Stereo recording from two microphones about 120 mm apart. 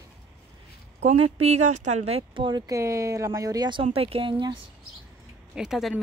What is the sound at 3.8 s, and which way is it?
Speech, 50° right (ahead or behind).